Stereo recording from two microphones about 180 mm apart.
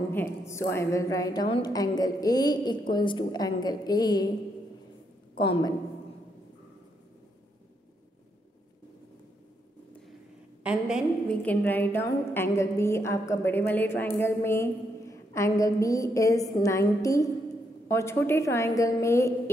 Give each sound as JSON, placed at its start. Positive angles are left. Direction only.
{"t": 0.1, "sound": "a woman's voice", "side_deg": 15}
{"t": 5.4, "sound": "a woman's voice", "side_deg": 25}
{"t": 10.6, "sound": "a woman's voice", "side_deg": -5}
{"t": 11.4, "sound": "a woman's voice", "side_deg": 10}